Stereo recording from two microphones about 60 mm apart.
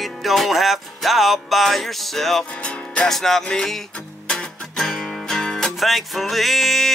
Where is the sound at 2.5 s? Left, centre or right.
Left.